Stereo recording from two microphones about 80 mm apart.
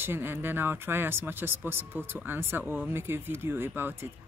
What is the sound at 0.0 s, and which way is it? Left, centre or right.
Speech, right.